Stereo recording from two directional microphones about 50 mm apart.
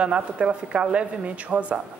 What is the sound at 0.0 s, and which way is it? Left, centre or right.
A woman's voice, right.